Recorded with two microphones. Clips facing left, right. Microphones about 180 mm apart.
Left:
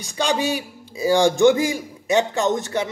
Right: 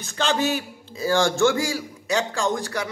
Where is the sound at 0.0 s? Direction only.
15° left (ahead or behind).